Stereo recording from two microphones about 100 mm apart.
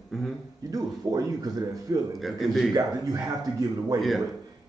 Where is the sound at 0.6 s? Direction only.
35° right (ahead or behind).